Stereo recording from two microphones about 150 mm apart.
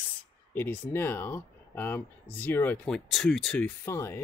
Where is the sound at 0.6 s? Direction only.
15° left (ahead or behind).